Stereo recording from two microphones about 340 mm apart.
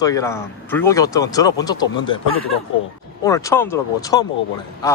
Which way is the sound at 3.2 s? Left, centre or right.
Centre.